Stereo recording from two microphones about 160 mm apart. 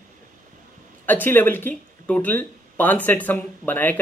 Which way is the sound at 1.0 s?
10° left (ahead or behind).